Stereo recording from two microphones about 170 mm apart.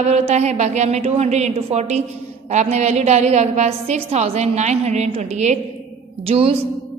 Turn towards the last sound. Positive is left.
turn(degrees=-35)  # may be behind; listen again after turning